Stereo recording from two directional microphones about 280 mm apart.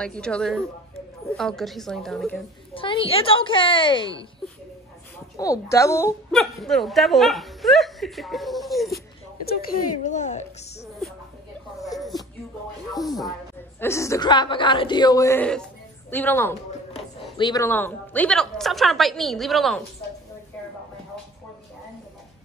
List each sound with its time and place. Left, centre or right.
0.0 s a woman's voice: centre
2.7 s a woman's voice: centre
5.4 s a woman's voice: centre
10.0 s a woman's voice: left
12.0 s a sound: centre
13.7 s a woman's voice: centre